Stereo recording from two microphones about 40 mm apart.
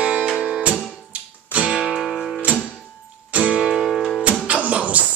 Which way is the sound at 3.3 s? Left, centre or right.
Right.